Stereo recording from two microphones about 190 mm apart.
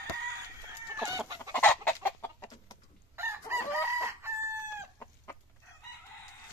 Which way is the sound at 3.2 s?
15° right (ahead or behind).